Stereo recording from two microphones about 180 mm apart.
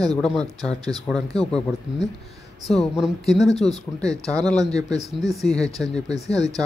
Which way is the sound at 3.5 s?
35° left (ahead or behind).